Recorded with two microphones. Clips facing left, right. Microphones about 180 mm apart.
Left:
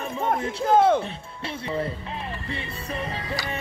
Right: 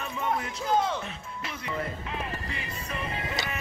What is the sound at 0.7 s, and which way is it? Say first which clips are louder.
Music: left 8 dB; 55° left (ahead or behind).